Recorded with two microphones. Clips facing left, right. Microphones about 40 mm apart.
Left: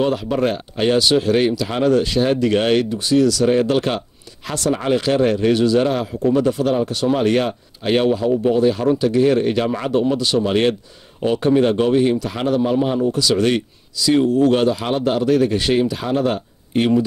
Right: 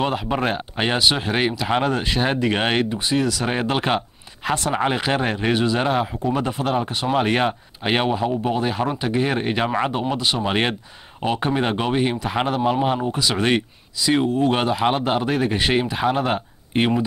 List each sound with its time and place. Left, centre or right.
0.0 s speech: right